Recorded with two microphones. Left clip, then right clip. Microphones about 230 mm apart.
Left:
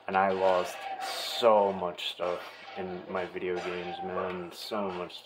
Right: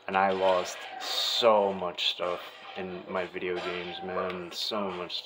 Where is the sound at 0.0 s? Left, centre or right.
Centre.